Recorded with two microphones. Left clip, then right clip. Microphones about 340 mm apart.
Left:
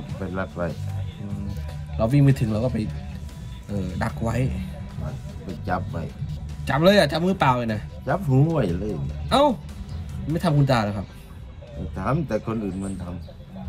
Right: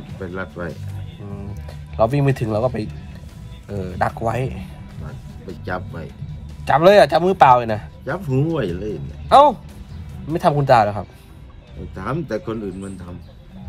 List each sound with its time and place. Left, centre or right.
0.2 s speech: centre
2.0 s speech: centre
4.2 s speech: centre
5.5 s speech: centre
6.6 s speech: centre
8.0 s speech: centre
9.3 s speech: centre
11.9 s speech: centre